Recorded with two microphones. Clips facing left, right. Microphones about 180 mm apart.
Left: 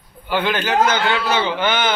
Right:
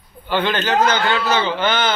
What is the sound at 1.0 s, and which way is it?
Speech, centre (ahead or behind).